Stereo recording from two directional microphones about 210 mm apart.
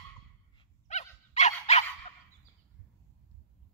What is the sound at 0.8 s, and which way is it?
Dog, 35° left (ahead or behind).